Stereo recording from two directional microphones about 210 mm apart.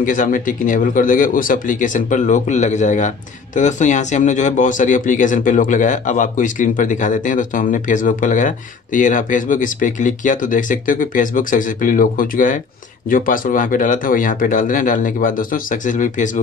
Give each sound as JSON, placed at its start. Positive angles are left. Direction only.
{"t": 0.0, "sound": "speech", "side_deg": 40}